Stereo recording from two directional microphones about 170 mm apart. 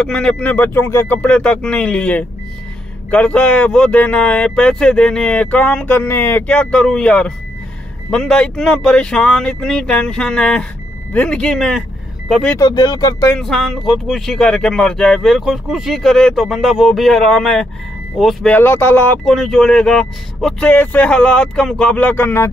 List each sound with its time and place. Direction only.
0.0 s speech: 5° left (ahead or behind)
12.5 s speech: 25° left (ahead or behind)
13.3 s speech: centre (ahead or behind)
18.5 s speech: 15° left (ahead or behind)
19.2 s speech: centre (ahead or behind)